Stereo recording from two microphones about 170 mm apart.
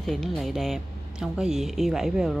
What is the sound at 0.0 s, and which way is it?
A woman's voice, centre (ahead or behind).